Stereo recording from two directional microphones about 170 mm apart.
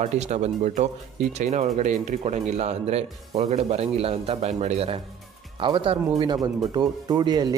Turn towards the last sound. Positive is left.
turn(degrees=-25)  # may be behind; listen again after turning